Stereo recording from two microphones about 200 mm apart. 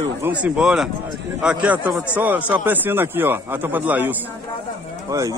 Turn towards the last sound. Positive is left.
turn(degrees=-15)  # may be behind; listen again after turning